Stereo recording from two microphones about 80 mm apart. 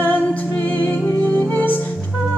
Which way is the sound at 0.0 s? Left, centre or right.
Left.